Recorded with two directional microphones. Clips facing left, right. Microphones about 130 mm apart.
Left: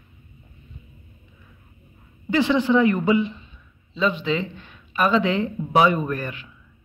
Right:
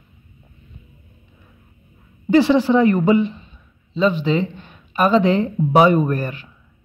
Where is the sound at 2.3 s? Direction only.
35° right (ahead or behind).